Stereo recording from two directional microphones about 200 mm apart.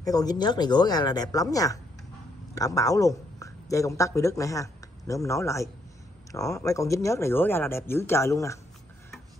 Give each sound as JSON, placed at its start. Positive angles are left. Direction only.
{"t": 0.0, "sound": "speech", "side_deg": 20}